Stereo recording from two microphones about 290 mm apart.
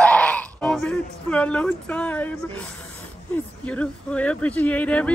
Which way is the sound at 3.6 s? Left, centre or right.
Centre.